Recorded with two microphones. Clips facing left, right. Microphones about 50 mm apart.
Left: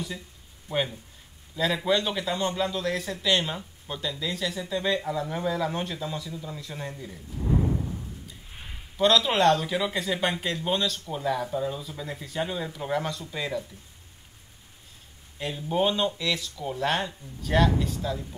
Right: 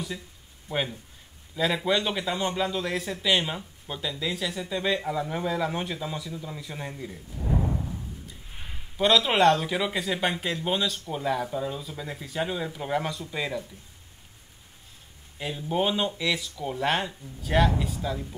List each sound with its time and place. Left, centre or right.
0.7 s a man's voice: centre
8.9 s a man's voice: centre
15.3 s a man's voice: centre